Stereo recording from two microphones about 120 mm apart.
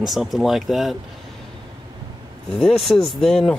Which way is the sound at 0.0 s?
Centre (ahead or behind).